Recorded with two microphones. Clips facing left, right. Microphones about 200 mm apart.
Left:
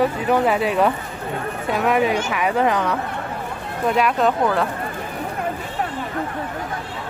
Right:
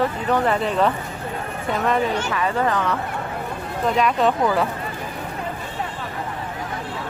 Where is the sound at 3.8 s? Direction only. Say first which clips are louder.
Left 1 dB; 5° left (ahead or behind).